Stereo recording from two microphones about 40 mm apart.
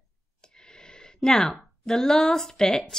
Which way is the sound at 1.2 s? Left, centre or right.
Centre.